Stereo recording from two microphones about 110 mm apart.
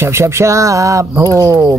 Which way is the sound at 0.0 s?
25° right (ahead or behind).